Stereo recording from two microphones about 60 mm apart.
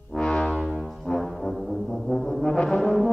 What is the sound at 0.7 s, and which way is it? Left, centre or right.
Brass instrument, centre.